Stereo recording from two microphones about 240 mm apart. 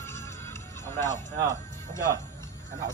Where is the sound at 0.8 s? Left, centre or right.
Centre.